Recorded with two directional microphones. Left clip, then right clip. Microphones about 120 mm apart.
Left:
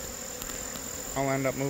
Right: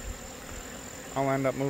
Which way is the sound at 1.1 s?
20° right (ahead or behind).